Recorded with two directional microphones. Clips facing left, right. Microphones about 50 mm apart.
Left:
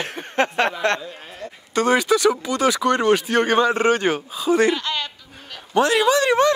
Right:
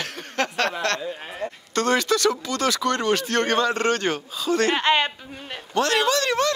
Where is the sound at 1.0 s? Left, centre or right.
Right.